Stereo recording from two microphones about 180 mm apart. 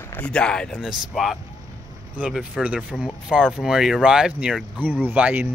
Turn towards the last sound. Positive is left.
turn(degrees=-10)  # may be behind; listen again after turning